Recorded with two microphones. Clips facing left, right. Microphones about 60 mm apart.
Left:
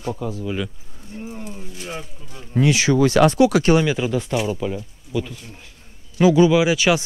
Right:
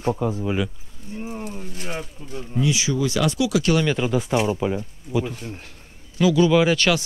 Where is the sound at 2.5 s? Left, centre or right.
Left.